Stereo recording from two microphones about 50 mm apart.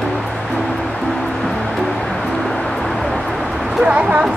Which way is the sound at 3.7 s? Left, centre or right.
Centre.